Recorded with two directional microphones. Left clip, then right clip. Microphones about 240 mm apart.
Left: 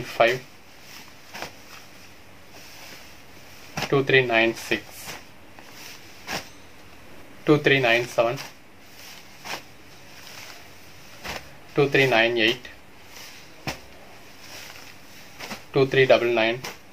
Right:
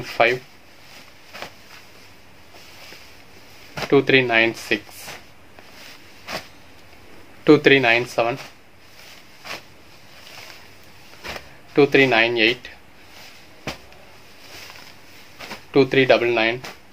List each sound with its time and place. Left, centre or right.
0.2 s speech: right
3.9 s speech: right
7.4 s speech: right
11.7 s speech: right
15.7 s speech: right